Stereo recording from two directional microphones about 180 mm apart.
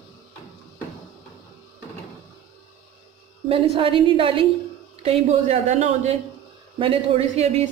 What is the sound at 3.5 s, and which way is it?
A woman's voice, 30° right (ahead or behind).